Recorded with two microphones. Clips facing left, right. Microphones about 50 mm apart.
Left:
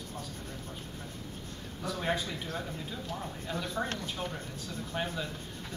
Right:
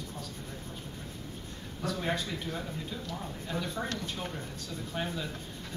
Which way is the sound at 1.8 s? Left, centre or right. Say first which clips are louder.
Even; centre.